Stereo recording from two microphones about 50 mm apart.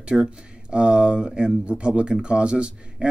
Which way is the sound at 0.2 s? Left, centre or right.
Centre.